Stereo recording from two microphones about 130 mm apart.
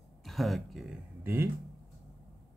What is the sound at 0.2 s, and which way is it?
Speech, centre (ahead or behind).